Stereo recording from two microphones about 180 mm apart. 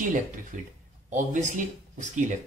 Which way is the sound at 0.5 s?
45° right (ahead or behind).